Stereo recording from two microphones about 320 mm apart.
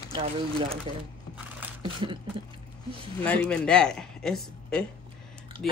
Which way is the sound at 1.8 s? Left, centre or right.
Centre.